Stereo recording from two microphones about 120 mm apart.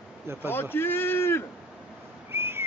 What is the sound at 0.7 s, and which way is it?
Speech, 20° left (ahead or behind).